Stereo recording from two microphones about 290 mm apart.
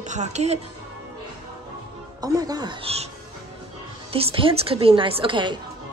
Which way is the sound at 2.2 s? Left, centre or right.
Centre.